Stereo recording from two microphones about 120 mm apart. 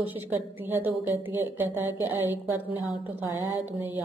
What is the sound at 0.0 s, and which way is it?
A woman's voice, 15° right (ahead or behind).